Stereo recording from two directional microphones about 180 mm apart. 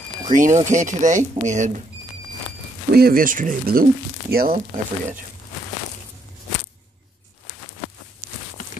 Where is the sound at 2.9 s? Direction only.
55° right (ahead or behind).